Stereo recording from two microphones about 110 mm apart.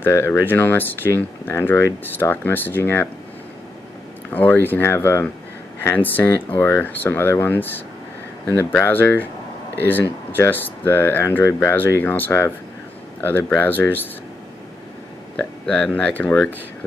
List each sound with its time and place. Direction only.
0.0 s speech: 20° left (ahead or behind)
4.3 s speech: 15° left (ahead or behind)
15.6 s speech: 5° left (ahead or behind)